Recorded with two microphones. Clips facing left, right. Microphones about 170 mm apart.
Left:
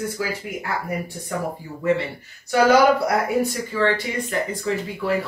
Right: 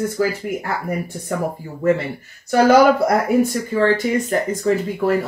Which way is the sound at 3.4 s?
45° right (ahead or behind).